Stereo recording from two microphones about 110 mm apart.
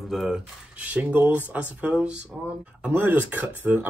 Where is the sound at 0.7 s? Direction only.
10° right (ahead or behind).